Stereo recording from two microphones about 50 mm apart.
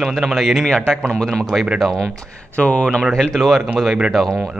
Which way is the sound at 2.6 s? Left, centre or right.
Left.